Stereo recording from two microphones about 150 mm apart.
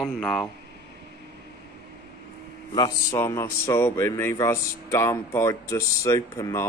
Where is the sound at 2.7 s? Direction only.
20° left (ahead or behind).